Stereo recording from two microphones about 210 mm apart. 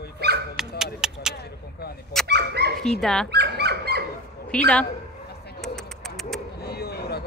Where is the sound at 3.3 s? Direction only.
50° right (ahead or behind).